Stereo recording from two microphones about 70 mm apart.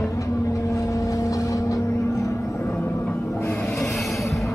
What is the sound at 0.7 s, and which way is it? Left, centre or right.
Vehicle, left.